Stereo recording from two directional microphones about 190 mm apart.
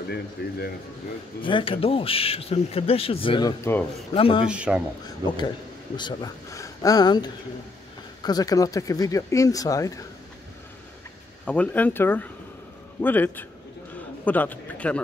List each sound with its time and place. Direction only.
0.4 s speech: 60° left (ahead or behind)
1.4 s speech: 25° left (ahead or behind)
4.1 s speech: 30° left (ahead or behind)
4.5 s speech: 5° right (ahead or behind)
5.2 s a man's voice: 20° right (ahead or behind)
5.9 s speech: 20° left (ahead or behind)
11.4 s a man's voice: 5° left (ahead or behind)